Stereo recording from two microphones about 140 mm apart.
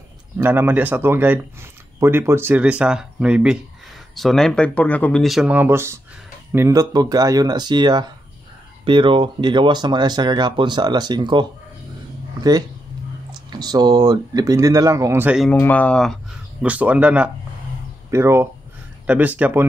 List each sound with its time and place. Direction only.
0.4 s speech: 15° right (ahead or behind)
5.5 s speech: 15° right (ahead or behind); by 11.4 s 35° right (ahead or behind)
13.3 s speech: 30° right (ahead or behind)
15.5 s speech: 10° left (ahead or behind)
16.6 s speech: 10° right (ahead or behind)